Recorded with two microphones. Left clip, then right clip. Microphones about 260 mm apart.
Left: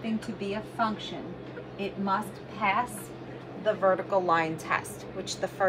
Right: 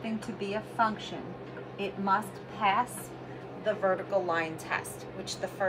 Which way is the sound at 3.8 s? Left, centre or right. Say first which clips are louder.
Left 4 dB; centre.